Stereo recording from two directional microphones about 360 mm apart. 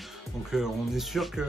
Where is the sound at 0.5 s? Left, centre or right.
Centre.